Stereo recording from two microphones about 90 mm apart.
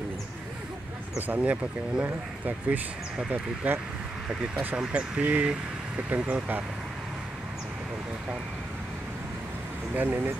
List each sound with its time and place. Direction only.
1.2 s speech: 15° right (ahead or behind)
9.9 s speech: 20° right (ahead or behind)